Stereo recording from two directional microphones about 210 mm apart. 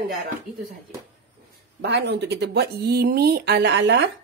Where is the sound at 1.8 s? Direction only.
55° right (ahead or behind).